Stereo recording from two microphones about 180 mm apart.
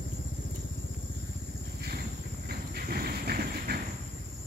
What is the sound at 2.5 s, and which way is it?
Horse, 60° right (ahead or behind).